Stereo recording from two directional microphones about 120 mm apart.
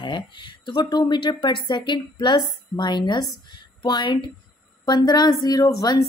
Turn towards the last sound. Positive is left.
turn(degrees=30)  # may be behind; listen again after turning